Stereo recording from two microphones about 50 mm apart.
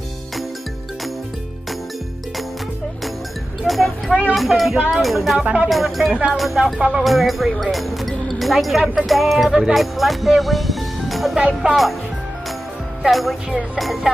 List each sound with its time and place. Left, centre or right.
3.6 s speech: centre
5.4 s speech: right
5.7 s speech: centre
11.3 s speech: centre
13.1 s speech: centre